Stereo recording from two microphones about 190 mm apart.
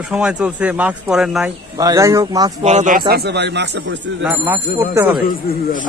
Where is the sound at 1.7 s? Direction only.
15° right (ahead or behind).